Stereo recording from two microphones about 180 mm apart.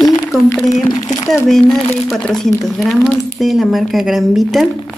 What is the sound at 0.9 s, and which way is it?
Speech, 20° left (ahead or behind).